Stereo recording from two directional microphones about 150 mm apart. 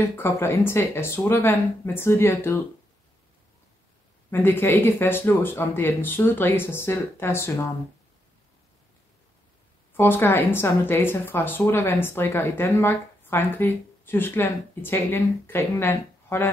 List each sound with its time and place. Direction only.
0.0 s speech: 15° left (ahead or behind)
4.3 s speech: 15° left (ahead or behind)
9.9 s speech: 15° left (ahead or behind)